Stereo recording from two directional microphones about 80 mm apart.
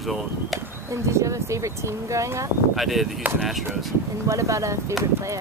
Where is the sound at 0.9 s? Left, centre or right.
Right.